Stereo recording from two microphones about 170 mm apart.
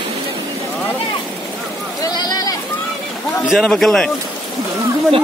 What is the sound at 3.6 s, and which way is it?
Speech, 5° left (ahead or behind).